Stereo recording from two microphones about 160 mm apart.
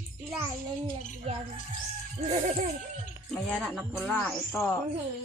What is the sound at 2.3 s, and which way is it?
Music, 50° right (ahead or behind).